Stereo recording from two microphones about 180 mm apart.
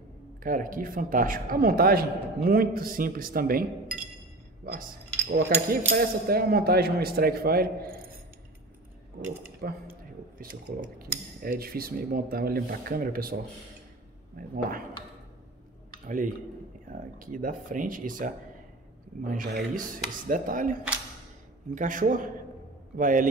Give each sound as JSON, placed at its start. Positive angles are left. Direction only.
{"t": 0.4, "sound": "speech", "side_deg": -50}
{"t": 4.7, "sound": "cutlery", "side_deg": -55}
{"t": 9.2, "sound": "speech", "side_deg": -60}
{"t": 11.0, "sound": "cutlery", "side_deg": -55}
{"t": 16.1, "sound": "speech", "side_deg": -50}
{"t": 19.5, "sound": "speech", "side_deg": -50}
{"t": 21.7, "sound": "speech", "side_deg": -45}